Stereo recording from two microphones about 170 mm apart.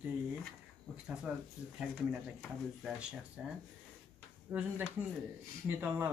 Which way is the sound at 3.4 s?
5° right (ahead or behind).